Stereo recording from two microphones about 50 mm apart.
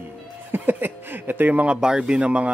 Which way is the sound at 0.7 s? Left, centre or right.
Right.